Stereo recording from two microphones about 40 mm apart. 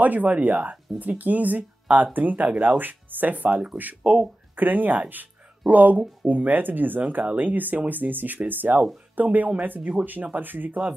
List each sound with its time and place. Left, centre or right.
0.0 s speech: right